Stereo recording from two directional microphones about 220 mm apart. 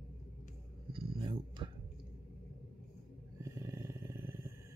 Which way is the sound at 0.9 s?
25° right (ahead or behind).